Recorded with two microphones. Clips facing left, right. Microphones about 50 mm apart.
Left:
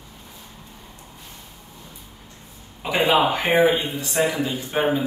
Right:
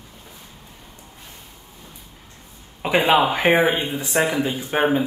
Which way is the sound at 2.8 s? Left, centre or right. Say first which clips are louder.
Right 5 dB; right.